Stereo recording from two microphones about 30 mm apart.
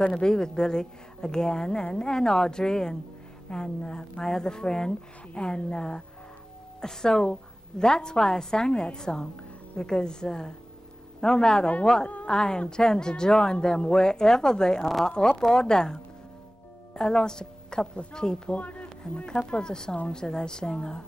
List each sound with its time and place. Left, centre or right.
0.1 s a woman's voice: left
18.6 s speech: left
19.2 s a woman's voice: left